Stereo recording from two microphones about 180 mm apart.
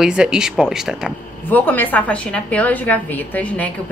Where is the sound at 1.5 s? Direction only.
10° left (ahead or behind).